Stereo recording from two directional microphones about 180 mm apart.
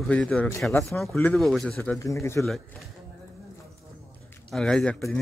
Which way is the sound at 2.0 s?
15° left (ahead or behind).